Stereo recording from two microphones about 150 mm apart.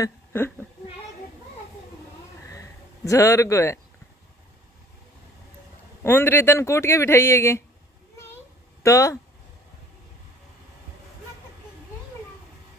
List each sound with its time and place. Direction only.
0.0 s a sound: 15° left (ahead or behind)
3.1 s a man's voice: 20° left (ahead or behind)
6.0 s speech: 15° left (ahead or behind)
8.8 s a man's voice: 20° left (ahead or behind)